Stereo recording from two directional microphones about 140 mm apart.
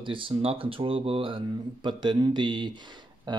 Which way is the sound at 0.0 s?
40° right (ahead or behind).